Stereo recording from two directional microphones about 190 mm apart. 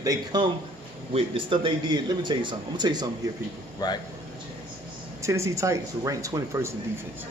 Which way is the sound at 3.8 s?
20° left (ahead or behind).